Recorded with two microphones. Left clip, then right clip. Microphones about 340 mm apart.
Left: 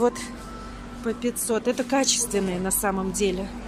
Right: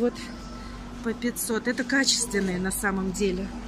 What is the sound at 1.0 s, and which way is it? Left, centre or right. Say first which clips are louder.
Speech: left 3 dB; centre.